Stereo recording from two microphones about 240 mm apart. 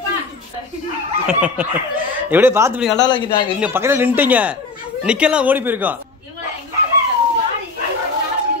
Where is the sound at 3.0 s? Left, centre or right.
Centre.